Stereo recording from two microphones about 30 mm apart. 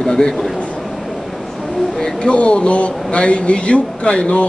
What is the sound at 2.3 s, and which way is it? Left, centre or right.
Speech, left.